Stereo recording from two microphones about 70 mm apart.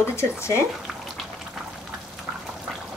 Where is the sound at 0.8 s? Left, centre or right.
Centre.